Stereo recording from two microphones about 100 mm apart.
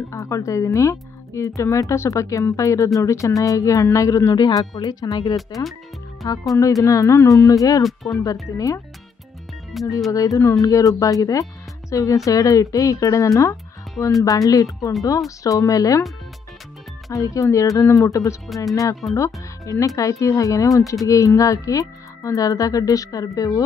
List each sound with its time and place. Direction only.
0.1 s speech: 30° left (ahead or behind)
5.5 s speech: centre (ahead or behind)
6.2 s speech: 40° left (ahead or behind)
9.7 s speech: centre (ahead or behind)
10.1 s speech: 35° left (ahead or behind)
17.1 s speech: 35° left (ahead or behind)
19.0 s speech: centre (ahead or behind)
19.6 s speech: 35° left (ahead or behind)